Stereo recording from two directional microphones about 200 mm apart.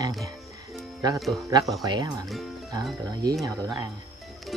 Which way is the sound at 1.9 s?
20° right (ahead or behind).